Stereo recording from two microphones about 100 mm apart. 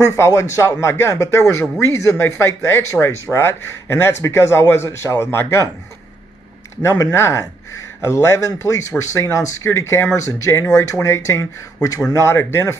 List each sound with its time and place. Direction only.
0.0 s speech: 30° left (ahead or behind)
6.8 s speech: 30° left (ahead or behind)